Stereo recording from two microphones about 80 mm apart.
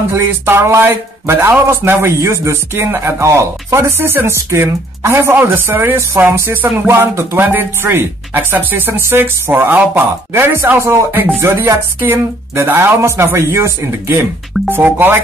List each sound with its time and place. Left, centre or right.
0.1 s speech: right